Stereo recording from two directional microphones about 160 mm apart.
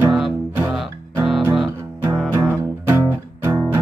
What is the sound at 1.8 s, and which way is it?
Music, 20° right (ahead or behind).